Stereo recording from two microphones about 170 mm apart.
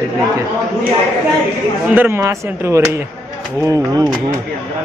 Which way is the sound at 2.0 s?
15° right (ahead or behind).